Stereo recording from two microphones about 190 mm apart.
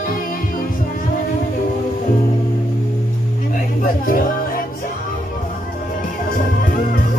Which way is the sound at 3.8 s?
45° left (ahead or behind).